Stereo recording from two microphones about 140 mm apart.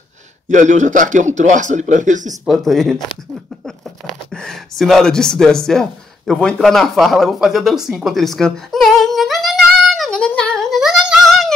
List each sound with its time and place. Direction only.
0.5 s a man's voice: 60° right (ahead or behind)
2.4 s speech: centre (ahead or behind)
4.3 s a sound: 5° left (ahead or behind)